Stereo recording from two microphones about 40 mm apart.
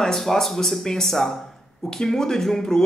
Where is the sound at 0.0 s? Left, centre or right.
Centre.